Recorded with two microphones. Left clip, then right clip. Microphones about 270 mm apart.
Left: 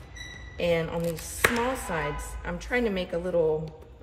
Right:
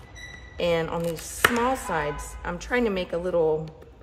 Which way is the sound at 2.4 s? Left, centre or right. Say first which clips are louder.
Right 2 dB; centre.